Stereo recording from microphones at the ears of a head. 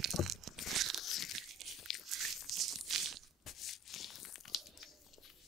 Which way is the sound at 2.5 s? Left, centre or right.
Right.